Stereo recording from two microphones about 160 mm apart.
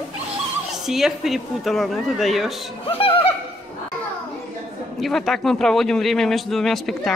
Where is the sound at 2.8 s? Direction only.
35° left (ahead or behind).